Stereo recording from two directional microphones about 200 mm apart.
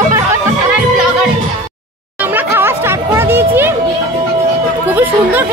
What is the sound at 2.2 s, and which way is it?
Music, 10° right (ahead or behind).